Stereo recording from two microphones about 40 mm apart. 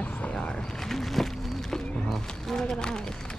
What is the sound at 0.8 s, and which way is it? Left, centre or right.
Speech, centre.